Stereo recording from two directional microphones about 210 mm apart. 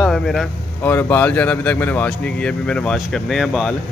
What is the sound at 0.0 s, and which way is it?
Speech, centre (ahead or behind).